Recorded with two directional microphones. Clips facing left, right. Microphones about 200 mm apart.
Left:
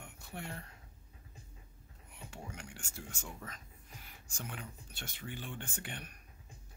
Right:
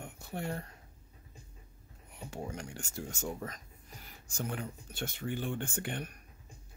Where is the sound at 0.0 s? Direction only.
40° right (ahead or behind).